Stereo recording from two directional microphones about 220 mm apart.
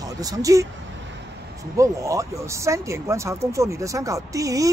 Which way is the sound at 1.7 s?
15° right (ahead or behind).